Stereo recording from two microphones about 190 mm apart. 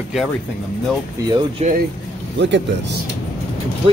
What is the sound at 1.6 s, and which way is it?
Speech, 35° right (ahead or behind).